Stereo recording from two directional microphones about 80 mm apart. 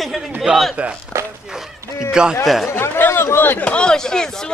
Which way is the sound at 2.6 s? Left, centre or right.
Left.